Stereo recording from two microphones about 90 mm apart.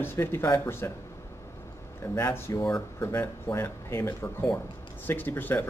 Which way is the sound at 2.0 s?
25° left (ahead or behind).